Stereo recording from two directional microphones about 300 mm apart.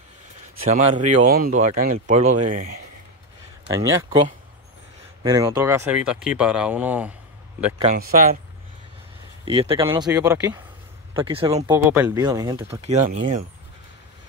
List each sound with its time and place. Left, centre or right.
0.7 s speech: right
3.7 s speech: centre
5.2 s speech: centre
7.8 s speech: right
9.4 s speech: centre